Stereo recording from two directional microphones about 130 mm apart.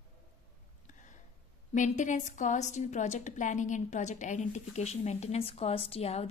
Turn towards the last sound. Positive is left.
turn(degrees=50)  # may be behind; listen again after turning